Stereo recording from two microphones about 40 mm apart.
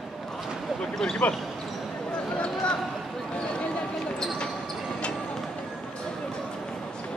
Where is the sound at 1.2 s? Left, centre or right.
Left.